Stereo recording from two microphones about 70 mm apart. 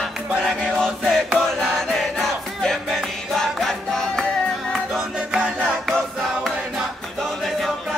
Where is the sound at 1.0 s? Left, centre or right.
Centre.